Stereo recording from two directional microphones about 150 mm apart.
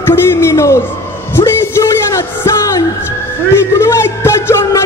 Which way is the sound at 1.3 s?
15° left (ahead or behind).